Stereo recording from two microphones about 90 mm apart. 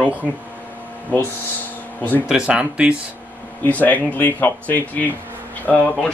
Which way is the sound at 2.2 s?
10° right (ahead or behind).